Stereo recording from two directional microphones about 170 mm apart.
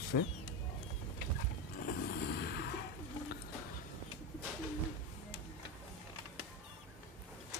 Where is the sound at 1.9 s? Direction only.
70° left (ahead or behind).